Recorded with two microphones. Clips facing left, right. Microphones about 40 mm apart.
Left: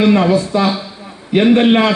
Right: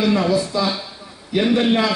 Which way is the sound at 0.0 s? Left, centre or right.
Left.